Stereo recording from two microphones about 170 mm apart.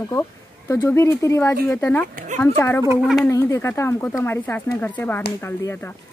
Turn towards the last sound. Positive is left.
turn(degrees=15)  # may be behind; listen again after turning